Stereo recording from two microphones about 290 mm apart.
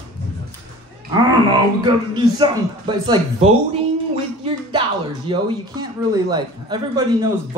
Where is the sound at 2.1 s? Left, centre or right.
Centre.